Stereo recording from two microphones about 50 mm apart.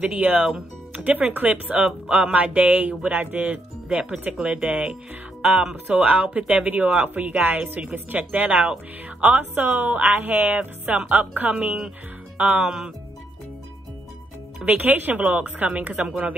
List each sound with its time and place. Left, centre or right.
0.0 s speech: right
3.9 s speech: centre; by 4.9 s right
5.4 s speech: centre
5.9 s speech: right
12.6 s speech: centre
14.6 s speech: right
15.9 s speech: centre